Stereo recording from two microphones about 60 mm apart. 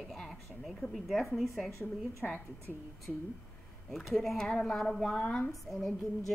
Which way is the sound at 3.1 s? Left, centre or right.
Centre.